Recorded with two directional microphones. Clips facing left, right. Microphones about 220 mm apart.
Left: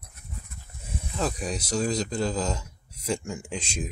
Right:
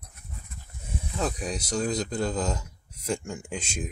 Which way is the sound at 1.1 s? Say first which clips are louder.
Left 1 dB; centre (ahead or behind).